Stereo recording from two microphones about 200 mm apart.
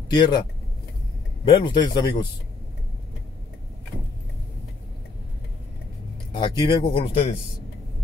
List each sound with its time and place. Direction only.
0.1 s speech: 20° left (ahead or behind)
1.5 s speech: 25° left (ahead or behind)
6.3 s speech: 25° left (ahead or behind)